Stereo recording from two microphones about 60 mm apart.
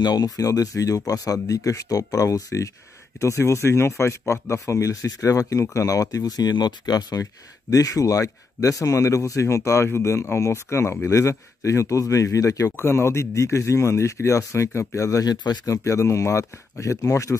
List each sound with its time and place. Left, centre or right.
0.4 s speech: left
3.2 s speech: left
7.7 s speech: left
12.7 s speech: left
15.0 s speech: left